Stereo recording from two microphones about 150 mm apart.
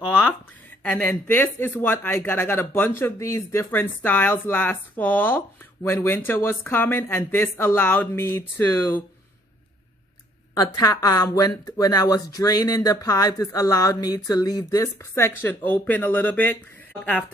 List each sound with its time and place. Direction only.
0.8 s speech: 10° left (ahead or behind)
10.6 s speech: 25° left (ahead or behind)